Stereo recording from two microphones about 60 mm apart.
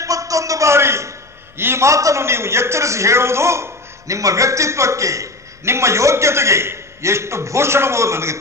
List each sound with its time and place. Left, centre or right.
0.0 s a sound: right
1.6 s a man's voice: right
1.9 s a man's voice: right
2.2 s a man's voice: right